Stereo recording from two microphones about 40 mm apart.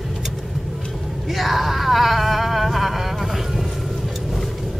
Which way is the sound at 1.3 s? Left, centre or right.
Centre.